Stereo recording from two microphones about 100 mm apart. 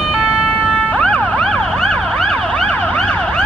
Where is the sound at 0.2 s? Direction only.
10° left (ahead or behind).